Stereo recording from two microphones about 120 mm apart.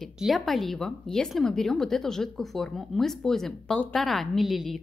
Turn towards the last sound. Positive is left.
turn(degrees=0)  # may be behind; listen again after turning